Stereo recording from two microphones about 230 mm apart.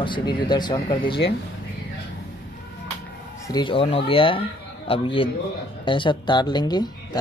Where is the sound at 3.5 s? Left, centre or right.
Left.